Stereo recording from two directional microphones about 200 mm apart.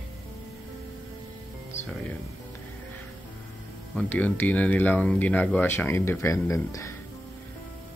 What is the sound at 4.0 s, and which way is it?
Speech, 5° left (ahead or behind).